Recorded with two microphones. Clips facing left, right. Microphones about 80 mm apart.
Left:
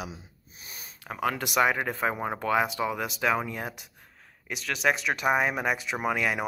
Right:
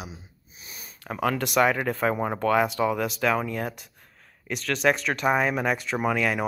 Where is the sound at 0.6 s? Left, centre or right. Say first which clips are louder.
Right 1 dB; left.